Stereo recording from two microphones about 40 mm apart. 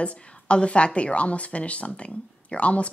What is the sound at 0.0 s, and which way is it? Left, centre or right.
A woman's voice, left.